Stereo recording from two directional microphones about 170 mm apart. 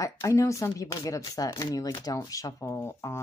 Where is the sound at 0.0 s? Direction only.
20° left (ahead or behind).